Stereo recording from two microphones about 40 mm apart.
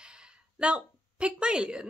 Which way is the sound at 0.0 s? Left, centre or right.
Right.